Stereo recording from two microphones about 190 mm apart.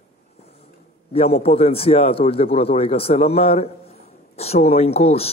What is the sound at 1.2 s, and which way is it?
A man's voice, 30° left (ahead or behind).